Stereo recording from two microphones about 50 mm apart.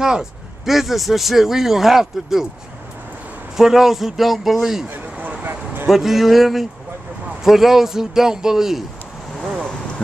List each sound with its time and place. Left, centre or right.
0.0 s speech: centre
3.5 s speech: centre
5.1 s vehicle: right
5.4 s a sound: right
5.9 s speech: centre
9.4 s vehicle: centre